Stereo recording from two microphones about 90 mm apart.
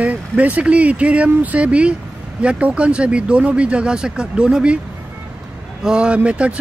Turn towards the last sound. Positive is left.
turn(degrees=-15)  # may be behind; listen again after turning